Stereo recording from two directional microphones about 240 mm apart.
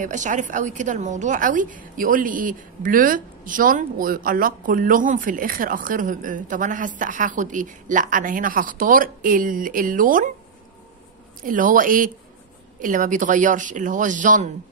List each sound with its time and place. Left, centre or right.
0.0 s a woman's voice: right
11.4 s a woman's voice: right